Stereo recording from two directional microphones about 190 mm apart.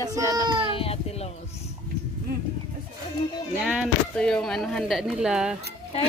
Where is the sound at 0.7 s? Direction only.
30° left (ahead or behind).